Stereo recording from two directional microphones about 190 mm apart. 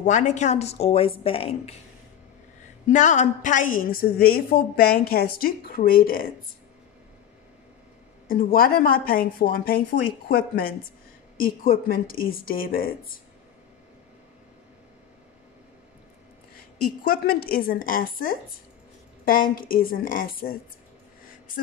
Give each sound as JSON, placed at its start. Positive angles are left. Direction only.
{"t": 0.0, "sound": "a woman's voice", "side_deg": 40}
{"t": 2.9, "sound": "a woman's voice", "side_deg": 40}
{"t": 8.3, "sound": "a woman's voice", "side_deg": 50}
{"t": 16.5, "sound": "a woman's voice", "side_deg": 50}